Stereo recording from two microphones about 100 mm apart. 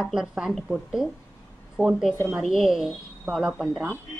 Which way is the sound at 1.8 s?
15° right (ahead or behind).